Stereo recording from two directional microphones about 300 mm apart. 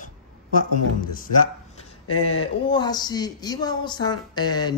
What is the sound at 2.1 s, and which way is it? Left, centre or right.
Speech, left.